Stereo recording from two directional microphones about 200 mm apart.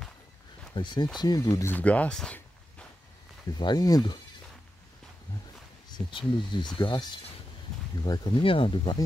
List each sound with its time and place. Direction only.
0.7 s speech: 20° left (ahead or behind); by 2.9 s 5° left (ahead or behind)
3.4 s speech: 20° left (ahead or behind)
5.9 s speech: 25° left (ahead or behind)